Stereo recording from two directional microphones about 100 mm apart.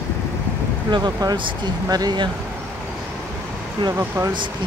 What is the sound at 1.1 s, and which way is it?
Speech, 35° right (ahead or behind).